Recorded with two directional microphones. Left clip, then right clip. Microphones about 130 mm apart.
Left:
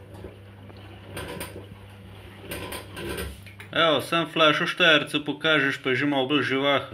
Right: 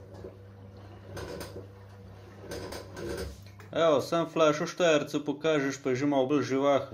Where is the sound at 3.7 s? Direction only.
20° right (ahead or behind).